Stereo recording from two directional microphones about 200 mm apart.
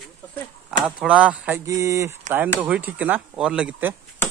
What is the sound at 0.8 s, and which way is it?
Speech, 5° right (ahead or behind).